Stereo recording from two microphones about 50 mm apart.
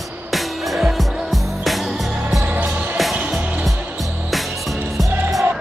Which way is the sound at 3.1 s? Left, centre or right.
Centre.